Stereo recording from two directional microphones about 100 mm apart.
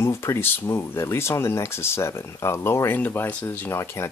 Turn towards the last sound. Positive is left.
turn(degrees=25)  # may be behind; listen again after turning